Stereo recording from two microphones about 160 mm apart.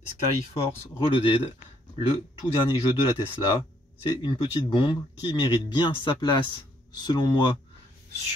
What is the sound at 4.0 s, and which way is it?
Speech, 30° left (ahead or behind).